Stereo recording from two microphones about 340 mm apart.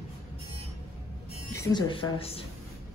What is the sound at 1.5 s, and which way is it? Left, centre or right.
Speech, centre.